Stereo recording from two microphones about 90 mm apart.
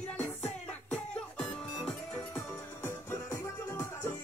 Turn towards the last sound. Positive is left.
turn(degrees=30)  # may be behind; listen again after turning